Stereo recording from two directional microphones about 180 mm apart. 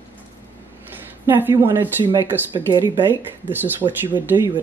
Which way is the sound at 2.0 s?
25° right (ahead or behind).